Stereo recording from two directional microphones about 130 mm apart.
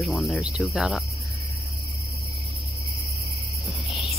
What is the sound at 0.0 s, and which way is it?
Cricket, centre (ahead or behind).